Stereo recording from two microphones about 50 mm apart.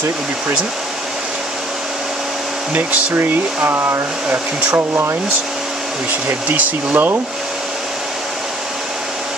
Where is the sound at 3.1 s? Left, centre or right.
Right.